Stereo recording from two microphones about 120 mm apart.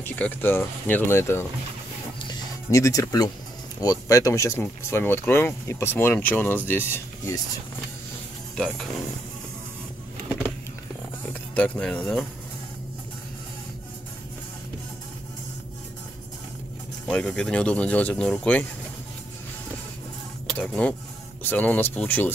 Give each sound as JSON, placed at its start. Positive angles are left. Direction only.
{"t": 0.0, "sound": "speech", "side_deg": 15}
{"t": 2.7, "sound": "speech", "side_deg": 25}
{"t": 8.5, "sound": "speech", "side_deg": 5}
{"t": 11.5, "sound": "speech", "side_deg": 10}
{"t": 17.1, "sound": "speech", "side_deg": 10}
{"t": 20.5, "sound": "speech", "side_deg": 10}